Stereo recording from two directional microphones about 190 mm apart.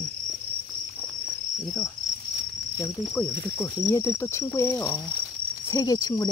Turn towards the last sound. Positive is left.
turn(degrees=20)  # may be behind; listen again after turning